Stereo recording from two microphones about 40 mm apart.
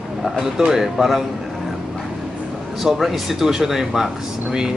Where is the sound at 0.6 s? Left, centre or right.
Centre.